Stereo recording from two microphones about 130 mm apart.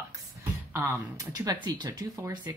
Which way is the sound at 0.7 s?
25° right (ahead or behind).